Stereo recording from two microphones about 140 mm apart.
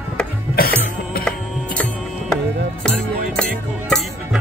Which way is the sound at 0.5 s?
90° left.